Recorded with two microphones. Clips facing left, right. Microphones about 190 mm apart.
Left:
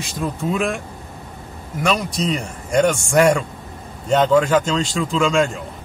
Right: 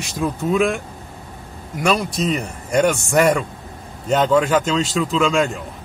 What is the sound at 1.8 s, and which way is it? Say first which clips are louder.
Speech: right 1 dB; 5° right (ahead or behind).